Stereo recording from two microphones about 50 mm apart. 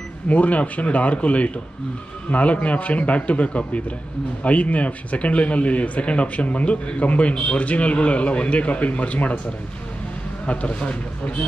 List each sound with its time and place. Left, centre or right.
0.3 s a man's voice: left
10.4 s a man's voice: left